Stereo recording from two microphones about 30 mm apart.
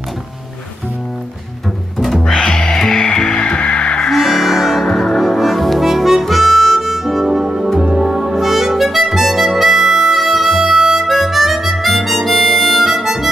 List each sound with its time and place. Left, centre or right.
2.3 s music: left
3.3 s music: left
4.1 s music: centre
4.9 s music: centre
5.2 s harmonica: centre
6.8 s music: centre
8.4 s harmonica: centre